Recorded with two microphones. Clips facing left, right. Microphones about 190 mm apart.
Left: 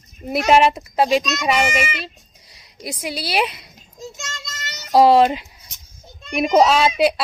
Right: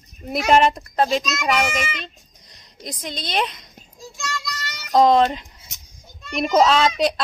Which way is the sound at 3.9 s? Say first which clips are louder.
Right 2 dB; 20° left (ahead or behind).